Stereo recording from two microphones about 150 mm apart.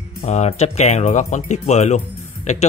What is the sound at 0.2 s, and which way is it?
Speech, 45° left (ahead or behind).